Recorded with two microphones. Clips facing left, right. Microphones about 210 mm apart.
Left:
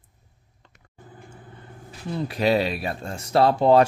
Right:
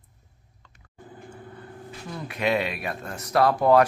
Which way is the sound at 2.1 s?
35° left (ahead or behind).